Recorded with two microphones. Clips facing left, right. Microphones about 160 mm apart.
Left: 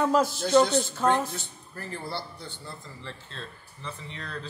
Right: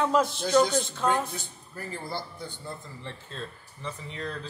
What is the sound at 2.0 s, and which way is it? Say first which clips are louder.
Speech: even; 45° right (ahead or behind).